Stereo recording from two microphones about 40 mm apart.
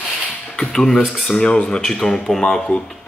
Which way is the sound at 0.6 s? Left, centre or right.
Centre.